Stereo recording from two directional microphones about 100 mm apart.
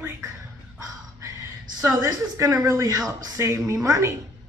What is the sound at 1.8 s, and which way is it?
A woman's voice, 35° right (ahead or behind).